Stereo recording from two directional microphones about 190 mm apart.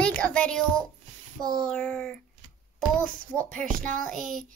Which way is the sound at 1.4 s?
20° right (ahead or behind).